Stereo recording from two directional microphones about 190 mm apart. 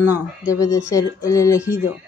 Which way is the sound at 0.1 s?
15° left (ahead or behind).